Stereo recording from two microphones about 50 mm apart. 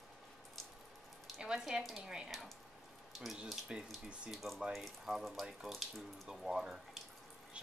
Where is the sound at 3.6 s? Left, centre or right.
Centre.